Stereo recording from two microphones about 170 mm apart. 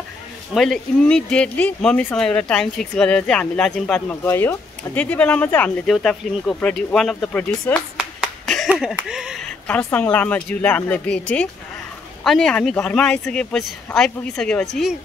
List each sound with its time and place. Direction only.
0.6 s speech: 5° left (ahead or behind)
8.0 s finger snapping: centre (ahead or behind)
9.7 s speech: 10° left (ahead or behind)